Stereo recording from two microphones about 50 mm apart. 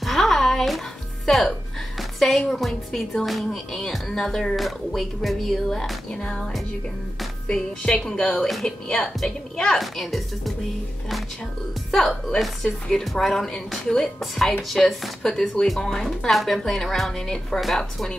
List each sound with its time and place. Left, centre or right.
0.0 s music: centre
2.0 s a woman's voice: centre
4.6 s a woman's voice: centre
6.0 s a woman's voice: centre
8.4 s a woman's voice: centre
11.9 s a woman's voice: centre